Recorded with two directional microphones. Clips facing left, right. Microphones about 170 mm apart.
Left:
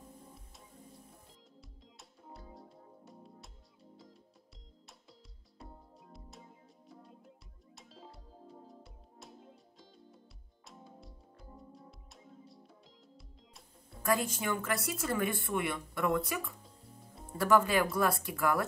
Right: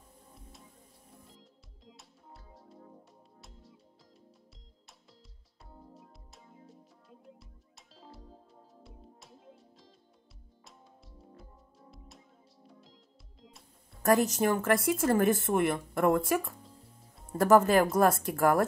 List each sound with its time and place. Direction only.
1.9 s music: centre (ahead or behind)
5.6 s music: centre (ahead or behind)
14.0 s speech: 45° right (ahead or behind)